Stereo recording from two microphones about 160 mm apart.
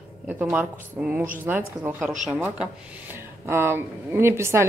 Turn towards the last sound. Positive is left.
turn(degrees=-15)  # may be behind; listen again after turning